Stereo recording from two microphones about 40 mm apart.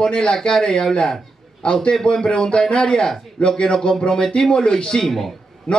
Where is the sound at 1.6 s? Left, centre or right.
Left.